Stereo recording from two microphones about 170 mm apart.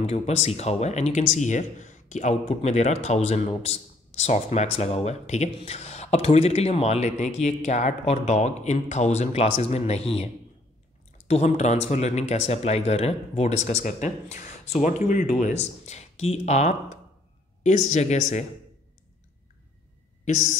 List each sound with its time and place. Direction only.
0.0 s speech: 40° left (ahead or behind)
20.2 s speech: 45° left (ahead or behind)